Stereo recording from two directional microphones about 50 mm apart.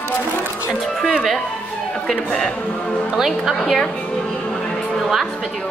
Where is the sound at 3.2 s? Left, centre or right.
Centre.